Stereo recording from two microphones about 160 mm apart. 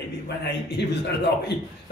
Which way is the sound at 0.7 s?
90° left.